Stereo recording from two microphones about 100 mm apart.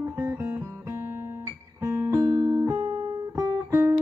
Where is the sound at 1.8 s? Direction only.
30° right (ahead or behind).